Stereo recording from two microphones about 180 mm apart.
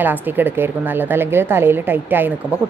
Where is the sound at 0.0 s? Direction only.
10° right (ahead or behind).